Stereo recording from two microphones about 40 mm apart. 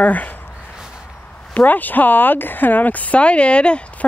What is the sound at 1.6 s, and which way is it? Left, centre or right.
Speech, left.